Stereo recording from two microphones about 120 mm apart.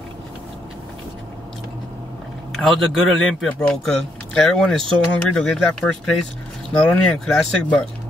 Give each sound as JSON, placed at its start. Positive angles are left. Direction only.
{"t": 2.5, "sound": "speech", "side_deg": 0}